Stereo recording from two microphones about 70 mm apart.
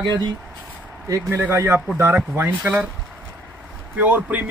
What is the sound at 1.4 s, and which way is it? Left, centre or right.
Speech, right.